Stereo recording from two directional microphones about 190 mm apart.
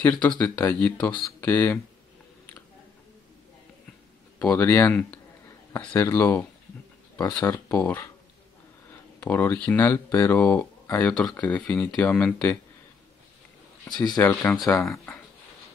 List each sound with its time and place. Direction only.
0.0 s speech: 10° left (ahead or behind)
4.4 s speech: 10° left (ahead or behind)
9.2 s speech: 10° left (ahead or behind)
13.8 s speech: 20° left (ahead or behind)
14.2 s speech: 10° left (ahead or behind)